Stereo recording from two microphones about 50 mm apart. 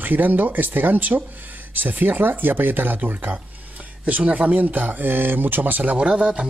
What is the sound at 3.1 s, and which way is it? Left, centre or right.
Speech, right.